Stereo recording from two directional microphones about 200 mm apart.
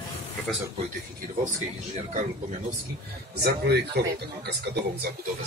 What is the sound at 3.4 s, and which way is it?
Speech, 55° right (ahead or behind).